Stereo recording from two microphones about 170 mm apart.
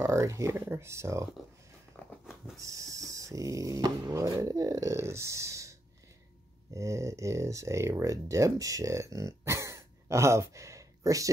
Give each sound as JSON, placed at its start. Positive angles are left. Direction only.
{"t": 0.0, "sound": "speech", "side_deg": -15}
{"t": 2.2, "sound": "a sound", "side_deg": 0}
{"t": 2.6, "sound": "dog", "side_deg": -20}
{"t": 6.7, "sound": "speech", "side_deg": -20}